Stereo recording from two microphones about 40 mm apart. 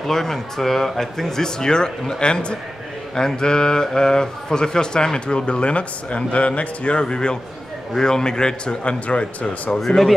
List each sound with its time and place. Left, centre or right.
0.0 s speech: centre
9.0 s speech: left
9.8 s speech: centre